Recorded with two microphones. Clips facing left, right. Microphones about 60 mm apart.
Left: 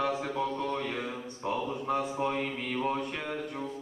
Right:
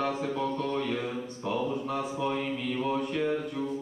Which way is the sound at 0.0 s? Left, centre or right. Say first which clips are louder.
Right 1 dB; centre.